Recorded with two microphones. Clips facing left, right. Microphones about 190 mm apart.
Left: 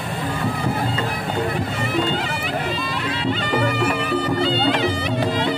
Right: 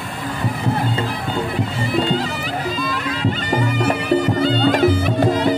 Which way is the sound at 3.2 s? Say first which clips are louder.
Even; 45° right (ahead or behind).